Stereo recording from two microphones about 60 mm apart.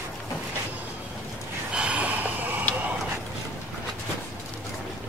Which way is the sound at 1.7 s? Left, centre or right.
Right.